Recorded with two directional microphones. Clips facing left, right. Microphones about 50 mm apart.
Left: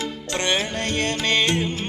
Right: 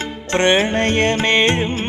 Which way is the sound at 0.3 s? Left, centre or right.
Right.